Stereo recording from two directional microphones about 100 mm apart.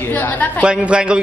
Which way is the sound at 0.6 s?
10° right (ahead or behind).